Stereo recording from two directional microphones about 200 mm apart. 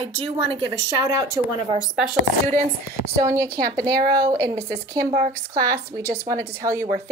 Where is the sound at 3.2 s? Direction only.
15° right (ahead or behind).